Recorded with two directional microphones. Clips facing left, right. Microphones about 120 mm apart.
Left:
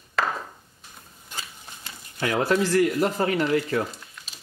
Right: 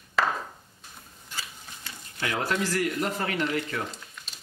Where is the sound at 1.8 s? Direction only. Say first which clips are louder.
Left 5 dB; 30° left (ahead or behind).